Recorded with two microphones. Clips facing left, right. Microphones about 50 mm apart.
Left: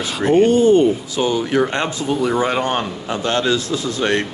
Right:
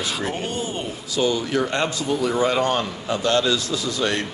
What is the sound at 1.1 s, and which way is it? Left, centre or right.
A man's voice, left.